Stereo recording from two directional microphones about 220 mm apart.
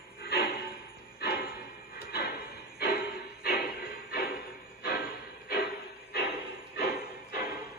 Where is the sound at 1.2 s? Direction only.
45° left (ahead or behind).